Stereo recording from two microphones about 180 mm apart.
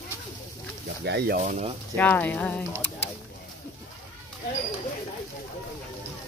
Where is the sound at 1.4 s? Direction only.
45° right (ahead or behind).